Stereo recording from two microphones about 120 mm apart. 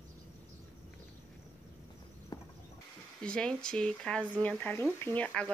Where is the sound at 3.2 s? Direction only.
5° left (ahead or behind).